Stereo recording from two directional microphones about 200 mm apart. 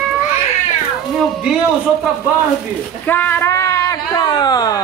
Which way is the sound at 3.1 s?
10° left (ahead or behind).